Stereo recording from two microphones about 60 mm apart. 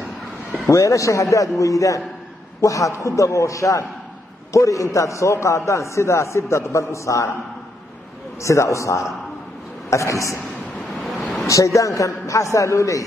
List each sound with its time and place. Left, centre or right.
0.7 s a man's voice: left
8.4 s a man's voice: left
10.8 s waves: centre
11.4 s a man's voice: left